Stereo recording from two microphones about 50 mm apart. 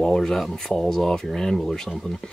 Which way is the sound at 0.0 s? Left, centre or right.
Centre.